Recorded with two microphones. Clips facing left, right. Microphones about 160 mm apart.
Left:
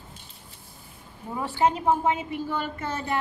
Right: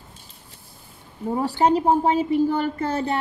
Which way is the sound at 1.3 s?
35° right (ahead or behind).